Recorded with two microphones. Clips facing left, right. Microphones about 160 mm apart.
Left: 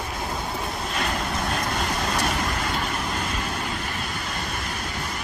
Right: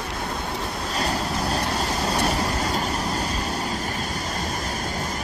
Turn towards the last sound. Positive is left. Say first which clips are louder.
# right 3 dB
turn(degrees=-40)  # may be behind; listen again after turning